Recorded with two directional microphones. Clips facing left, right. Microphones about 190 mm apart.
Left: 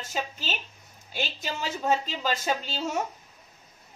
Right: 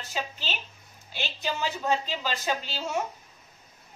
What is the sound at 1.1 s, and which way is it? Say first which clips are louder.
A woman's voice: even; 45° left (ahead or behind).